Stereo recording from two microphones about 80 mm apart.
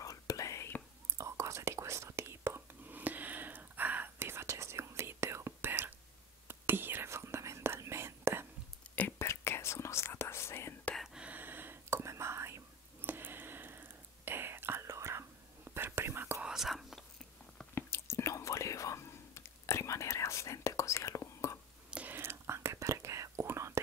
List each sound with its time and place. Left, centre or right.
0.0 s whispering: left
1.1 s whispering: right
3.0 s whispering: right
9.2 s whispering: left
11.1 s whispering: centre
14.9 s whispering: right
16.4 s whispering: centre
17.7 s whispering: left
22.1 s whispering: right